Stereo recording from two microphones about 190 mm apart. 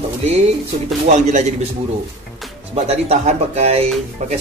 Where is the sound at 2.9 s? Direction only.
35° right (ahead or behind).